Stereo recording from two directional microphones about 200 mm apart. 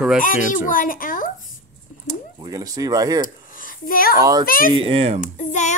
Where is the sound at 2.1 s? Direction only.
20° right (ahead or behind).